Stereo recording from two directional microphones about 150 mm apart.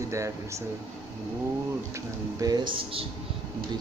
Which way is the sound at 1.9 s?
25° right (ahead or behind).